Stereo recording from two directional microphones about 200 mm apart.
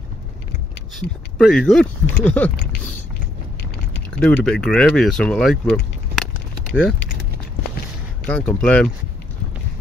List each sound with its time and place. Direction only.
0.9 s speech: centre (ahead or behind)
4.1 s speech: 5° left (ahead or behind)
6.7 s speech: 5° right (ahead or behind)
8.3 s speech: 5° left (ahead or behind)